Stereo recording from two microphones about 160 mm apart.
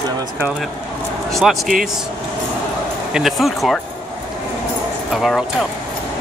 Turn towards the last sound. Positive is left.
turn(degrees=0)  # may be behind; listen again after turning